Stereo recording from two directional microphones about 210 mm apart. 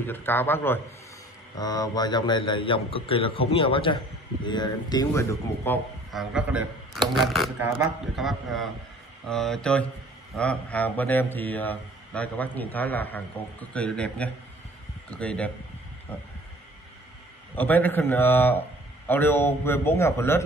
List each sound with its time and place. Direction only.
0.0 s a man's voice: 10° left (ahead or behind)
6.1 s a man's voice: centre (ahead or behind)
17.6 s speech: 10° left (ahead or behind)